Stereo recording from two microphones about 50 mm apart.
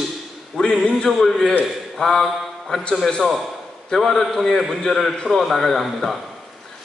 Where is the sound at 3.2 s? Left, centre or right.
Centre.